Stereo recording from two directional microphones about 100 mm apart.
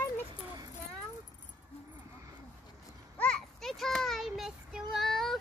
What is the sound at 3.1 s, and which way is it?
Child singing, 10° left (ahead or behind).